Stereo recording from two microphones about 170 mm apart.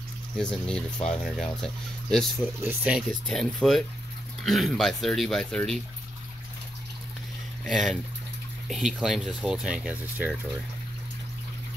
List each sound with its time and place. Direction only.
0.4 s speech: 5° left (ahead or behind)
7.6 s speech: centre (ahead or behind)